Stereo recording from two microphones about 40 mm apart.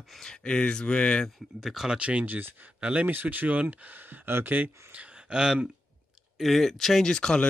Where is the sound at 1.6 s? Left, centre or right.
Centre.